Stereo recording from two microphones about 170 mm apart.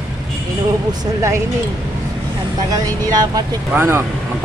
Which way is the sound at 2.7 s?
20° right (ahead or behind).